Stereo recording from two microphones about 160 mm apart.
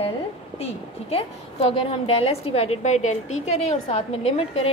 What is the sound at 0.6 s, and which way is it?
A woman's voice, 40° left (ahead or behind).